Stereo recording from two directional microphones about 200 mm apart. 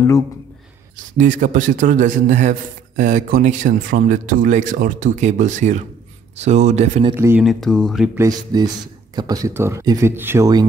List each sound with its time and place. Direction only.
0.9 s speech: 40° right (ahead or behind)
7.2 s a man's voice: 10° right (ahead or behind)
7.4 s speech: centre (ahead or behind)
8.2 s a man's voice: 20° right (ahead or behind)